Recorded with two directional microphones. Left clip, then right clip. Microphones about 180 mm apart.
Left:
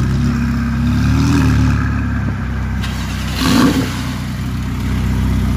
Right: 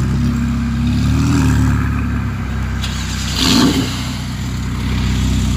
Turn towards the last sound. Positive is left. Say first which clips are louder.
# right 1 dB
turn(degrees=20)  # may be behind; listen again after turning